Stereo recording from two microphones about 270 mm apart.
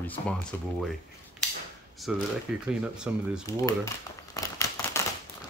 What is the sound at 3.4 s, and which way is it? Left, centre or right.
Speech, centre.